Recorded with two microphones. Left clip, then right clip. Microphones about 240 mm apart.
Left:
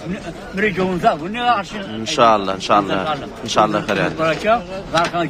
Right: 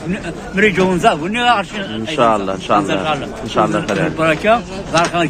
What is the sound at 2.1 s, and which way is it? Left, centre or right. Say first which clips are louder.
A man's voice: left 1 dB; centre.